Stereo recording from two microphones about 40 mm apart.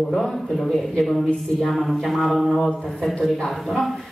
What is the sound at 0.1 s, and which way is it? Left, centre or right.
Speech, centre.